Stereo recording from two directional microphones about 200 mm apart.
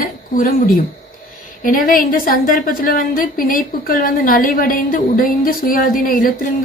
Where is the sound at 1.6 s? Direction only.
45° left (ahead or behind).